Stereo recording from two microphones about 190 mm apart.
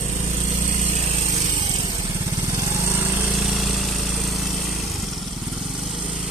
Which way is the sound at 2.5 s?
15° right (ahead or behind).